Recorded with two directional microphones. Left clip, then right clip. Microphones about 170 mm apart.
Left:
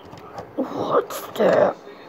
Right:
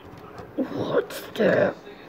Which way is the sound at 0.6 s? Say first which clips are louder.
Left 4 dB; 20° right (ahead or behind).